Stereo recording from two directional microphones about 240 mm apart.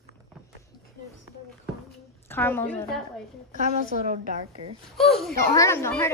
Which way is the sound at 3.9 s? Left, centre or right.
Right.